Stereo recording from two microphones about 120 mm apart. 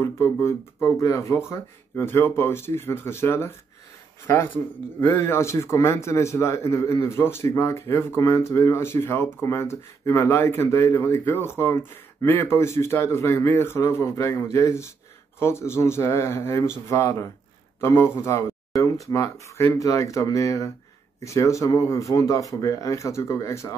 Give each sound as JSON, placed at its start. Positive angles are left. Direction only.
{"t": 0.0, "sound": "a man's voice", "side_deg": 20}
{"t": 5.0, "sound": "a man's voice", "side_deg": 20}